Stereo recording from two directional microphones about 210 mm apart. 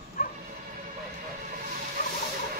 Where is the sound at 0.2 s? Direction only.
40° left (ahead or behind).